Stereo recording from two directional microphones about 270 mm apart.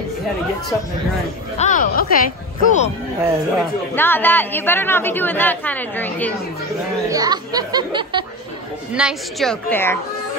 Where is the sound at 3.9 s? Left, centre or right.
Centre.